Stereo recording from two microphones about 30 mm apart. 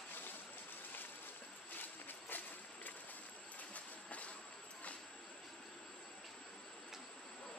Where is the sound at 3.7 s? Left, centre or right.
Left.